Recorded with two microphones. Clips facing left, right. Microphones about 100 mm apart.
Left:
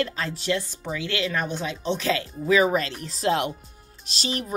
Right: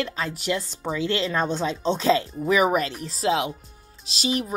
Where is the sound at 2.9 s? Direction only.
5° right (ahead or behind).